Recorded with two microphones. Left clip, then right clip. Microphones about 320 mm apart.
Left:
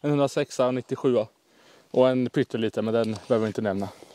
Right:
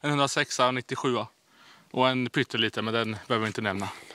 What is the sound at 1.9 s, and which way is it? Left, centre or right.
Speech, right.